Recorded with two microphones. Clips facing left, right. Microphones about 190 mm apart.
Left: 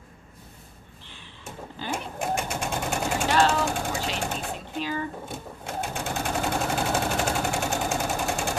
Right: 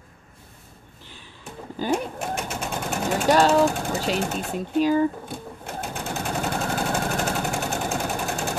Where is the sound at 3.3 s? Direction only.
40° right (ahead or behind).